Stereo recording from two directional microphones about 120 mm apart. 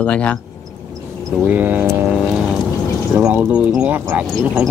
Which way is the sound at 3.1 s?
15° right (ahead or behind).